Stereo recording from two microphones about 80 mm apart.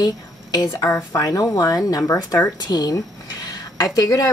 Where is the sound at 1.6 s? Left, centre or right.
Left.